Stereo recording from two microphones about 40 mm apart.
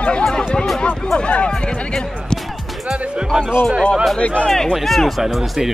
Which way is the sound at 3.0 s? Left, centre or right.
Right.